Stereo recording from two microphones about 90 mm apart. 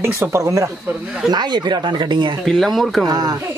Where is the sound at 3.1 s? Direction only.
45° right (ahead or behind).